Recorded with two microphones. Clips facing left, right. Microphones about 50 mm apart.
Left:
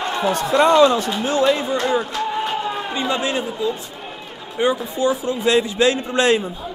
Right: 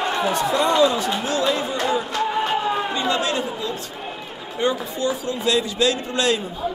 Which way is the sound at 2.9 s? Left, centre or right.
Centre.